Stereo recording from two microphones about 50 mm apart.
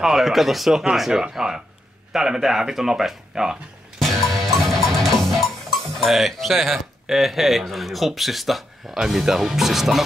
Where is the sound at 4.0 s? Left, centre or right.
Centre.